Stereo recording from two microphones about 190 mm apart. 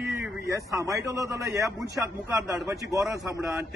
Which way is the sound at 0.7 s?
15° right (ahead or behind).